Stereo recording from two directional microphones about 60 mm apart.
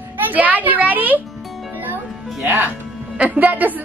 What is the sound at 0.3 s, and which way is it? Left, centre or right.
Speech, right.